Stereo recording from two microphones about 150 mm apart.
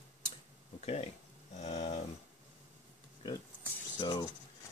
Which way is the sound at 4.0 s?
30° left (ahead or behind).